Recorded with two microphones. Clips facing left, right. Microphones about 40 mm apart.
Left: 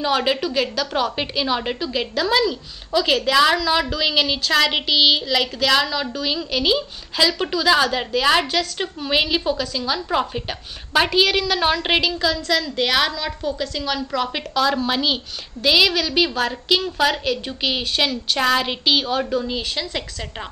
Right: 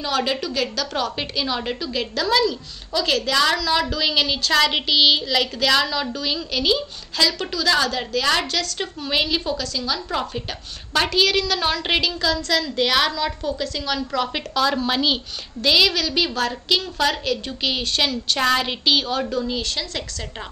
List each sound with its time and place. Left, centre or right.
0.0 s a woman's voice: centre